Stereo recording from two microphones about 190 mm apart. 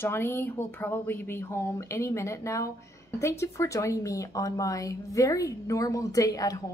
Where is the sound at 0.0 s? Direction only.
10° left (ahead or behind).